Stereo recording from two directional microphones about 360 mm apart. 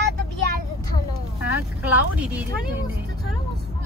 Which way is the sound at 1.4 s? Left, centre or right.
Centre.